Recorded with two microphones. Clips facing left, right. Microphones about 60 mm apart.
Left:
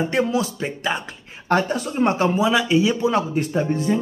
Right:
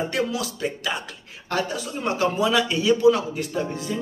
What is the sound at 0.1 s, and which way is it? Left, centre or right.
A man's voice, left.